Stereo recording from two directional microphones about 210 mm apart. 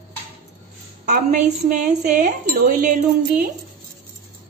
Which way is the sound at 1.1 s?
35° right (ahead or behind).